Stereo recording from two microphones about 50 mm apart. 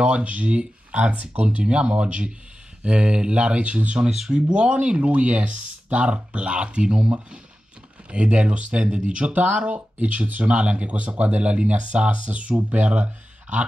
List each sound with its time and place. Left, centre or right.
0.0 s speech: right